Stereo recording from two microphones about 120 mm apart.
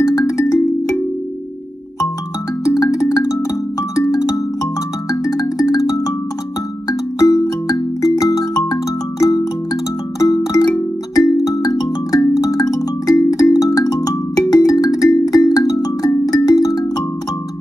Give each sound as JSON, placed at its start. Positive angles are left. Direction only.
{"t": 0.0, "sound": "music", "side_deg": 30}
{"t": 2.6, "sound": "marimba", "side_deg": 25}
{"t": 3.9, "sound": "music", "side_deg": 25}